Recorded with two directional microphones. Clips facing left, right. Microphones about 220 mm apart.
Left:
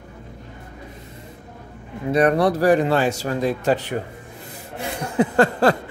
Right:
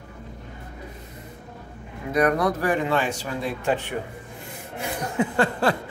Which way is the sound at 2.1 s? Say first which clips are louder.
Left 4 dB; 30° left (ahead or behind).